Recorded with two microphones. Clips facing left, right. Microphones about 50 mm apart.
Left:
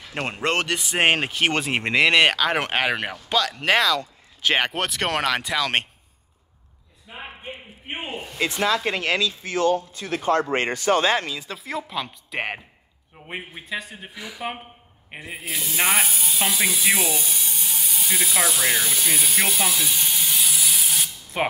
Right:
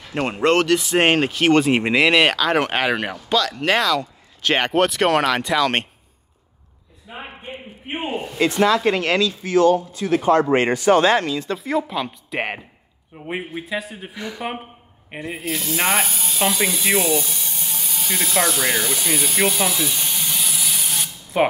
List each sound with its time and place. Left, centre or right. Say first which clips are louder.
0.0 s speech: right 6 dB; centre
7.1 s a sound: right 3 dB; centre
8.6 s speech: right 3 dB; centre
9.7 s speech: right 5 dB; right
11.2 s speech: right 8 dB; centre